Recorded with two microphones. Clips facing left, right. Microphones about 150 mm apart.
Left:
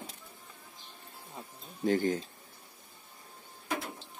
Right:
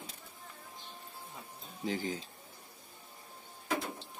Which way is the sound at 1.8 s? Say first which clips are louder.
Left 8 dB; 55° left (ahead or behind).